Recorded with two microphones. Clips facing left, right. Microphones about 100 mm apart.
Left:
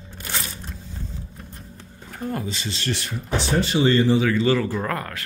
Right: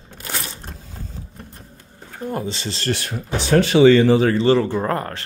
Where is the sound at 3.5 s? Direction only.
85° right.